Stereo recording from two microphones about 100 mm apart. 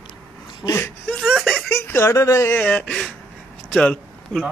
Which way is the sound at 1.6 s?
25° left (ahead or behind).